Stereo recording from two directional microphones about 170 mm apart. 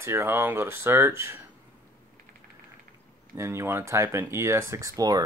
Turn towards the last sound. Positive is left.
turn(degrees=-20)  # may be behind; listen again after turning